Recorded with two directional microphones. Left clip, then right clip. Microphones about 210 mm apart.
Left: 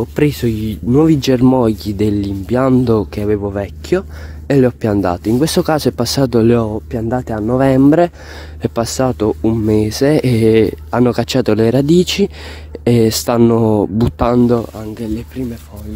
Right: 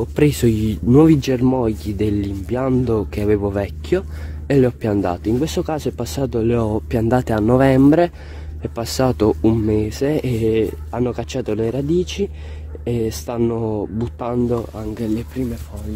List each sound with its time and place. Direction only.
0.2 s speech: centre (ahead or behind)
1.1 s speech: 20° left (ahead or behind)
3.2 s speech: 5° left (ahead or behind); by 6.6 s 30° left (ahead or behind)
6.7 s speech: 5° right (ahead or behind)
7.5 s speech: 5° left (ahead or behind)
9.7 s speech: 25° left (ahead or behind)
14.8 s speech: 5° left (ahead or behind)